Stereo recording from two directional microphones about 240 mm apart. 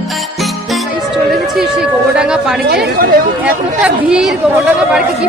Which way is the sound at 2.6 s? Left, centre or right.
Right.